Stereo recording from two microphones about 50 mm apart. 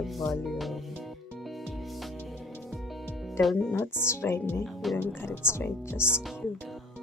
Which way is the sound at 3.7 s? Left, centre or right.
Left.